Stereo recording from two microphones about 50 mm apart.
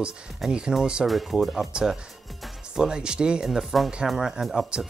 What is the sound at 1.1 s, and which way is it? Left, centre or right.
Speech, centre.